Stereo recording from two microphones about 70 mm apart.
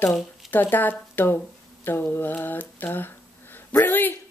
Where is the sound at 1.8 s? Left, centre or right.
Left.